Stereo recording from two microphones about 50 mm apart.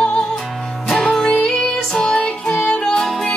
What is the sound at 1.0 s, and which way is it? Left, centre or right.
Music, centre.